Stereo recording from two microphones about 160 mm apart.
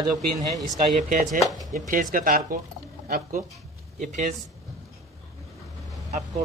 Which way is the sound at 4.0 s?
45° right (ahead or behind).